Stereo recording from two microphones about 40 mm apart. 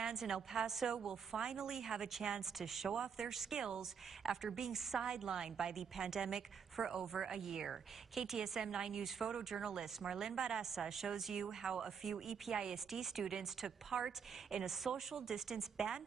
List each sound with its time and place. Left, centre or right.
0.0 s a woman's voice: centre
4.2 s a woman's voice: centre